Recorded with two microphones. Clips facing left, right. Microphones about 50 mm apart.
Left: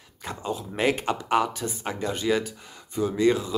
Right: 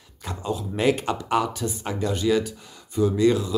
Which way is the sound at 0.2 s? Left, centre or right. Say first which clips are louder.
Right 2 dB; left.